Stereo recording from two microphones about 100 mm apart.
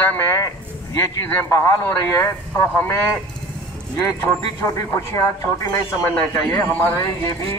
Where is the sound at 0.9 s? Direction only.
30° left (ahead or behind).